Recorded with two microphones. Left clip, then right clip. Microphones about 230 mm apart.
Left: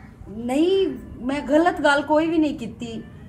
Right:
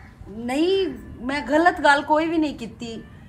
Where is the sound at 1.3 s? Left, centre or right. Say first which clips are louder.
Even; right.